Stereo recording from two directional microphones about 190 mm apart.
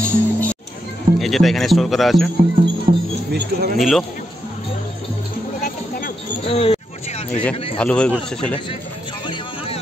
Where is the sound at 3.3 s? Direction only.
55° right (ahead or behind).